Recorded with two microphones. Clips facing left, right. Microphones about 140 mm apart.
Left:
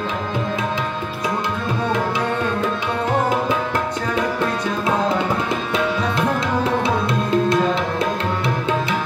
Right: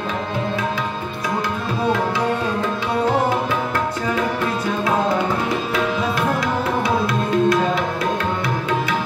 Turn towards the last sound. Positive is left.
turn(degrees=25)  # may be behind; listen again after turning